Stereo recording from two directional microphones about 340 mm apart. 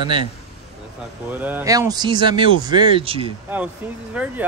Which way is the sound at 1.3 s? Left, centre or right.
Centre.